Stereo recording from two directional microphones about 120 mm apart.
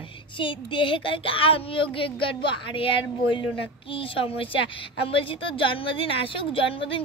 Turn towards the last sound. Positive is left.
turn(degrees=45)  # may be behind; listen again after turning